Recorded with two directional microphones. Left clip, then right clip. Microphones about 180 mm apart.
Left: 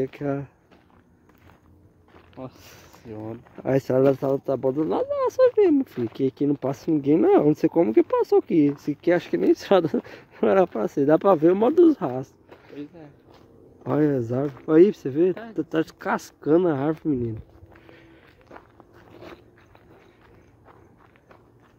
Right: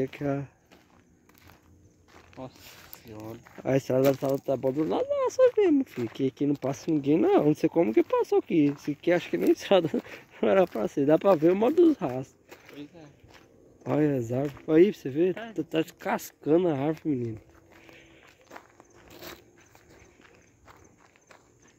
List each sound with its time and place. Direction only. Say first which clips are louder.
0.0 s speech: left 3 dB; centre (ahead or behind)
2.4 s speech: left 3 dB; 55° left (ahead or behind)
3.5 s speech: left 4 dB; centre (ahead or behind)
12.7 s a sound: left 8 dB; 40° left (ahead or behind)
13.8 s speech: left 4 dB; centre (ahead or behind)
19.1 s walk: left 1 dB; 10° right (ahead or behind)